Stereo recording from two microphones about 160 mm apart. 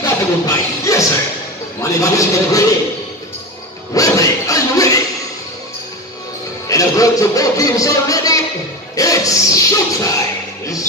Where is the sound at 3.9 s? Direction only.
20° left (ahead or behind).